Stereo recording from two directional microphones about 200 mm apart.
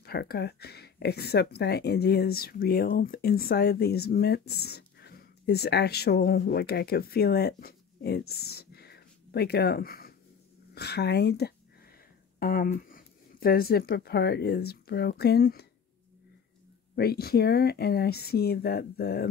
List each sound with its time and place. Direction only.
0.0 s speech: 50° left (ahead or behind)
16.9 s speech: 50° left (ahead or behind)